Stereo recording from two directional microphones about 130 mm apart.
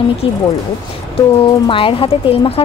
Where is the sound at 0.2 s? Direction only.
45° left (ahead or behind).